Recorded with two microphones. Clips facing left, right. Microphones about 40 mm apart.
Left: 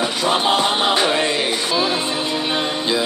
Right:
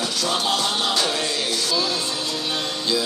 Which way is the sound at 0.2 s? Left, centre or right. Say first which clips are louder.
Left 6 dB; left.